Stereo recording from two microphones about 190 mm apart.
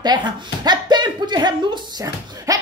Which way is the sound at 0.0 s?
20° right (ahead or behind).